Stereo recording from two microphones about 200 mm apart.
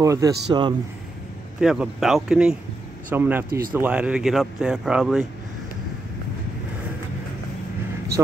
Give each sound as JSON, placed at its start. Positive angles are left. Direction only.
{"t": 0.0, "sound": "speech", "side_deg": -15}
{"t": 1.6, "sound": "speech", "side_deg": -5}